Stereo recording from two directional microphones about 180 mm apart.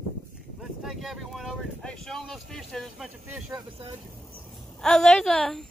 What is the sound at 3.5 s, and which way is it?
Speech, 30° right (ahead or behind).